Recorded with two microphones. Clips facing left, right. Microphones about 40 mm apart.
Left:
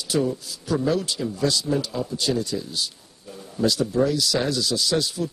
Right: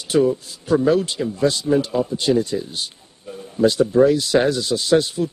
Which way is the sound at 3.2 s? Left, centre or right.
Centre.